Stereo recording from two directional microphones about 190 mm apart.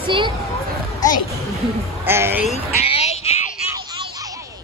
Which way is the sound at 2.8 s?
30° left (ahead or behind).